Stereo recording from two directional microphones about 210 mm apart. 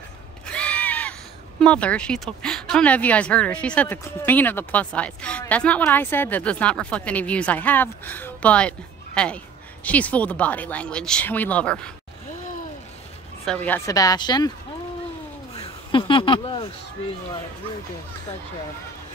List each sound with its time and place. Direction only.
0.5 s a sound: 5° left (ahead or behind)
1.6 s speech: 5° left (ahead or behind)
13.5 s speech: 10° left (ahead or behind)
15.5 s speech: 25° left (ahead or behind)